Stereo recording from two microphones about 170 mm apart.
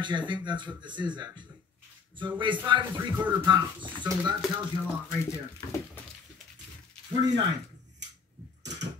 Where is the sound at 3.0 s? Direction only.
10° right (ahead or behind).